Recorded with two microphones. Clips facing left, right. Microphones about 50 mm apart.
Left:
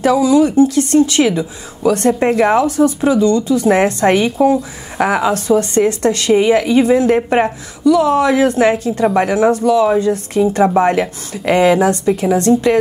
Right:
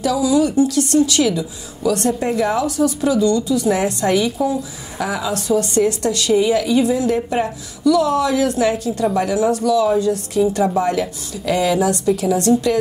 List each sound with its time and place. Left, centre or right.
0.0 s speech: left
7.8 s speech: left